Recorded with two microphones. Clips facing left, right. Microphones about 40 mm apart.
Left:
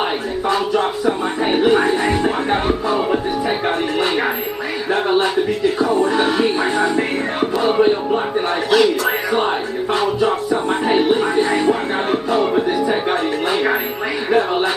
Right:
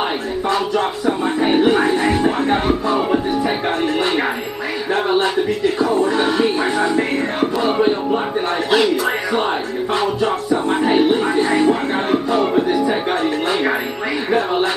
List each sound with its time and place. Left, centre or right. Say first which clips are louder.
0.5 s music: left 1 dB; centre
2.7 s speech: right 1 dB; centre
4.9 s music: even; centre
5.9 s music: even; left
6.1 s music: even; centre
8.6 s speech: left 1 dB; centre
10.5 s music: right 1 dB; centre
10.9 s speech: even; centre
12.4 s music: left 1 dB; centre